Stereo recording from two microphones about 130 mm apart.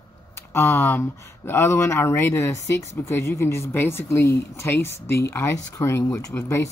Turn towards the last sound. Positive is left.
turn(degrees=20)  # may be behind; listen again after turning